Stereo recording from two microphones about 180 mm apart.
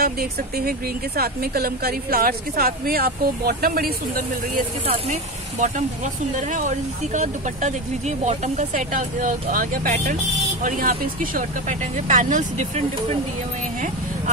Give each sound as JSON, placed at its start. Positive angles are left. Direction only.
{"t": 0.0, "sound": "speech", "side_deg": -55}
{"t": 4.8, "sound": "speech", "side_deg": -35}